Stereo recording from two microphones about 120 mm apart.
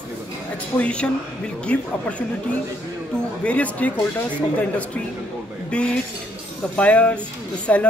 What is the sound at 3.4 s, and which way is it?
Speech, 10° left (ahead or behind).